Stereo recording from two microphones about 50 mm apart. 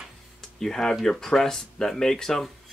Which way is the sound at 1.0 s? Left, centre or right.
Centre.